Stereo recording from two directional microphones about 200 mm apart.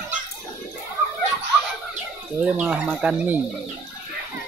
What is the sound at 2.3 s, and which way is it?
Speech, 5° right (ahead or behind).